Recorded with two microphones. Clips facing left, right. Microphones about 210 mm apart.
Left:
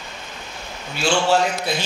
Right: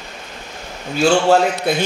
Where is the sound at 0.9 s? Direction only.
55° right (ahead or behind).